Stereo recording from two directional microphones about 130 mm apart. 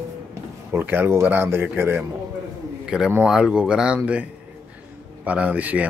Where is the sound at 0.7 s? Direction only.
15° right (ahead or behind).